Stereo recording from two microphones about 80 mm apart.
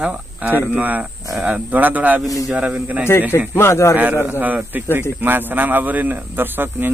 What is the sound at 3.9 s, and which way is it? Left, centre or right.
Speech, right.